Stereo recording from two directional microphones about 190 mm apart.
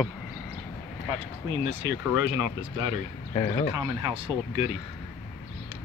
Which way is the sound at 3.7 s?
20° right (ahead or behind).